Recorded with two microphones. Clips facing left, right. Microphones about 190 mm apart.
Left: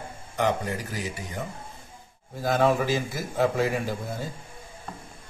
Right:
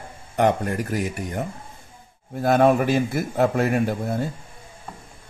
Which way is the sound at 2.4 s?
60° right (ahead or behind).